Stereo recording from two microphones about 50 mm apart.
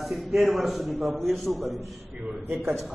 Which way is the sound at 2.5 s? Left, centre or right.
Right.